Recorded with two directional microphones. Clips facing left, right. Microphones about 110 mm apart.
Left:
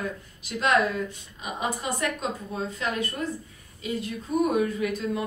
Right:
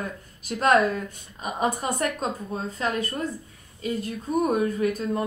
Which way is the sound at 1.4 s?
40° right (ahead or behind).